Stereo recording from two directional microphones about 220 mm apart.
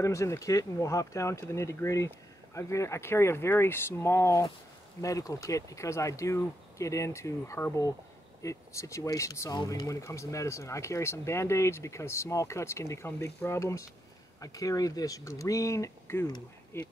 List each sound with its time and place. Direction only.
0.0 s speech: 15° left (ahead or behind)